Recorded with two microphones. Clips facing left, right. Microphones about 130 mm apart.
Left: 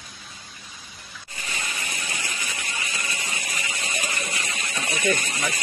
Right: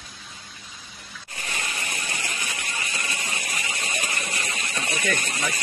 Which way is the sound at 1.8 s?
50° right (ahead or behind).